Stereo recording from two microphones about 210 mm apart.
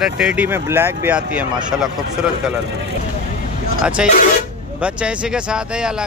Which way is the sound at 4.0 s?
5° right (ahead or behind).